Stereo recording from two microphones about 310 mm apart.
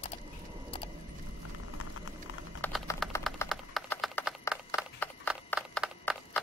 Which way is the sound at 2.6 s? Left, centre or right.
Centre.